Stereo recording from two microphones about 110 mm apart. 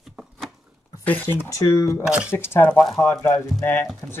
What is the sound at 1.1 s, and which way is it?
Speech, 20° left (ahead or behind).